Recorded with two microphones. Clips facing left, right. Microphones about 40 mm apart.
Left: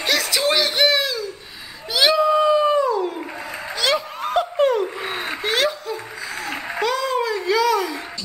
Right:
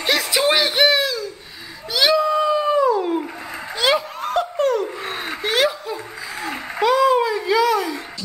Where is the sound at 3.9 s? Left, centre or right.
Right.